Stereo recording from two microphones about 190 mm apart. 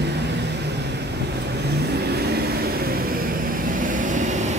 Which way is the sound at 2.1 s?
55° right (ahead or behind).